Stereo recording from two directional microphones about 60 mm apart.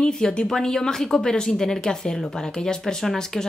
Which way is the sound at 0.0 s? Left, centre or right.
Centre.